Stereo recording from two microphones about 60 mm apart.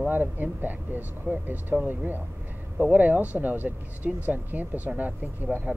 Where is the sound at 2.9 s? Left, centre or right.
Right.